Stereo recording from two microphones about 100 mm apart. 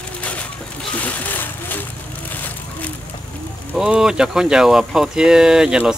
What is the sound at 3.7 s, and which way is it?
Speech, 10° right (ahead or behind).